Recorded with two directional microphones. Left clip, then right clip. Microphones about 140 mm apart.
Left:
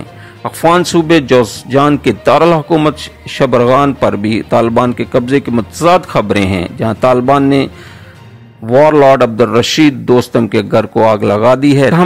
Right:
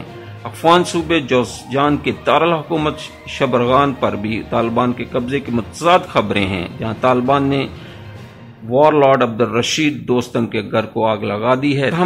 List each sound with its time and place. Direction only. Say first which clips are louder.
0.4 s a man's voice: left 3 dB; 35° left (ahead or behind)
8.7 s a man's voice: left 5 dB; 40° left (ahead or behind)